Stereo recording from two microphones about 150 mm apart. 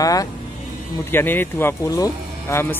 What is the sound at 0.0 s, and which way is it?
Speech, 25° left (ahead or behind).